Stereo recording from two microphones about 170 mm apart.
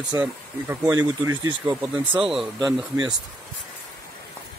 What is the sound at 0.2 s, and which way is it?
Speech, 10° right (ahead or behind).